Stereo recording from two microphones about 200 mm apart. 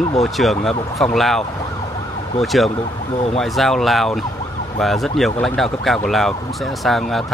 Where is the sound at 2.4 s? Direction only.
Centre (ahead or behind).